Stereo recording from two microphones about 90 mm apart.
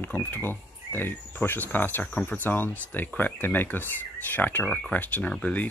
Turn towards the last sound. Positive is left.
turn(degrees=15)  # may be behind; listen again after turning